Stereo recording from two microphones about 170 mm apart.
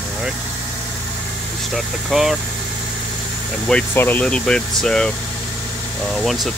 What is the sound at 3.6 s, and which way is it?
Speech, 10° left (ahead or behind).